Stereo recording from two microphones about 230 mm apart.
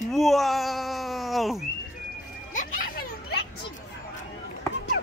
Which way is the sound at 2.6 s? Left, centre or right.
Left.